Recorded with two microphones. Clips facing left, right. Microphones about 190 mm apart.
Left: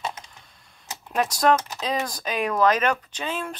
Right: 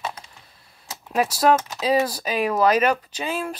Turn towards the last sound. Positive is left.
turn(degrees=-10)  # may be behind; listen again after turning